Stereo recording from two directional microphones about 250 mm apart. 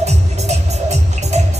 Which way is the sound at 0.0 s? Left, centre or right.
Right.